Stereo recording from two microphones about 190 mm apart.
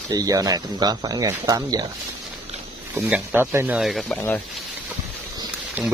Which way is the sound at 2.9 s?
10° right (ahead or behind).